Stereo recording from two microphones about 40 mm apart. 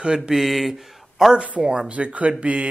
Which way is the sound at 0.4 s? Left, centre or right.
Centre.